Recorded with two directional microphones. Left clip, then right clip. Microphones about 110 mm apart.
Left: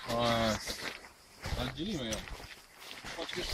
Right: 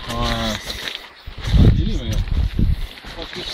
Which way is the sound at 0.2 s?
35° left (ahead or behind).